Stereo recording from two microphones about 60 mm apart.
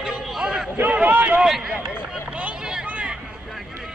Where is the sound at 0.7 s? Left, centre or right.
Right.